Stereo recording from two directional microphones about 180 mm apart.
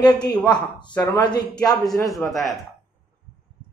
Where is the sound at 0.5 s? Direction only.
25° left (ahead or behind).